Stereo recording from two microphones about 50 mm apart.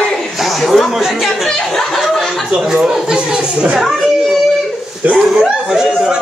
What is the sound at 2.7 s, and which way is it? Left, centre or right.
Speech, centre.